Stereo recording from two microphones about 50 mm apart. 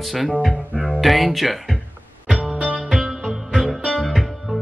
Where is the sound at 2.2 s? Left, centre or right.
Centre.